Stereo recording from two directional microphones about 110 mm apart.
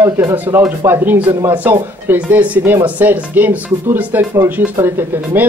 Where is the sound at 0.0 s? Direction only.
25° right (ahead or behind).